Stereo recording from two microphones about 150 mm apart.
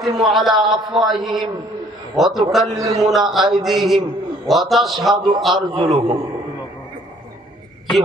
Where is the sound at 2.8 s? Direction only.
25° right (ahead or behind).